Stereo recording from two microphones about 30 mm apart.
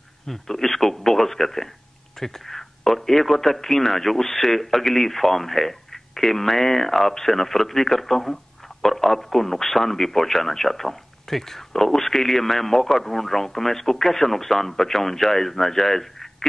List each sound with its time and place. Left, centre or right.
0.3 s speech: centre